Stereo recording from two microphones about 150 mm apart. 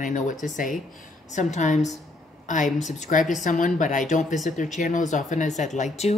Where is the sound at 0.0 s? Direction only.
55° left (ahead or behind).